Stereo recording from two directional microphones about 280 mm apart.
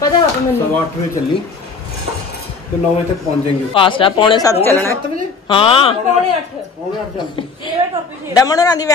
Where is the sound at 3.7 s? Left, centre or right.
Centre.